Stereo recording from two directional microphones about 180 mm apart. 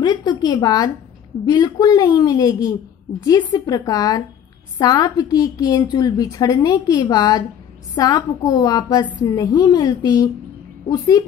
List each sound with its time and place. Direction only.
0.0 s a woman's voice: 25° left (ahead or behind)